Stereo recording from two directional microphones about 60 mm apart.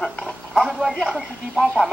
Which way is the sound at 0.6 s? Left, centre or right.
Centre.